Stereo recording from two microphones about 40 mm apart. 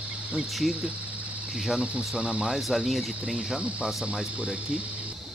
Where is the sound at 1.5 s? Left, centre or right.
Right.